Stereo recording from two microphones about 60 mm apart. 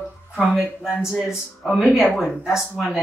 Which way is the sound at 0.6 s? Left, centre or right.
Right.